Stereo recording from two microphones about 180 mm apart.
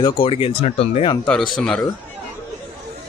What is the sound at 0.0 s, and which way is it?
Speech, 30° left (ahead or behind).